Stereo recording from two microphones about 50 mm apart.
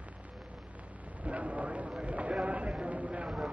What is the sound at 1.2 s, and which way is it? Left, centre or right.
Speech, right.